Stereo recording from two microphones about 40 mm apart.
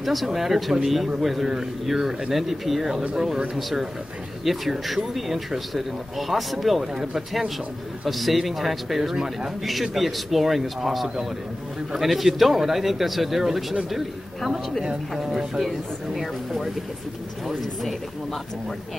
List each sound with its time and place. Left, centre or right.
0.0 s speech: centre
4.5 s speech: centre
9.1 s speech: centre
9.6 s speech: centre